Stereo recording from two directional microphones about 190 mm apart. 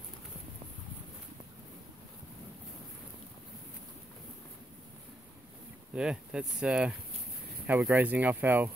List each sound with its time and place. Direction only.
5.9 s speech: 5° right (ahead or behind)